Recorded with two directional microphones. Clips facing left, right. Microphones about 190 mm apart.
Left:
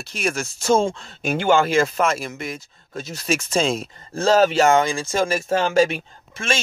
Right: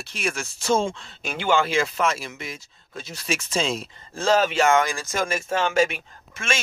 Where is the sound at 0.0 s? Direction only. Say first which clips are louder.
Left 4 dB; 40° left (ahead or behind).